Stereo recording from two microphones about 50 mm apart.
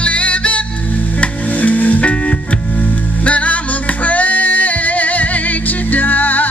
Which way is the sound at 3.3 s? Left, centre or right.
Left.